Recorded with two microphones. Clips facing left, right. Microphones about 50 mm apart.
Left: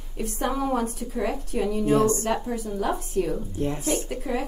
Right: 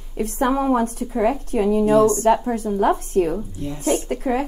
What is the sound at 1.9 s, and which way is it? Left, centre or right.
Speech, right.